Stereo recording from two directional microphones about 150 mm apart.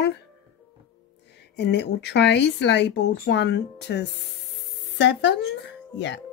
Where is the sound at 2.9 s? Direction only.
90° left.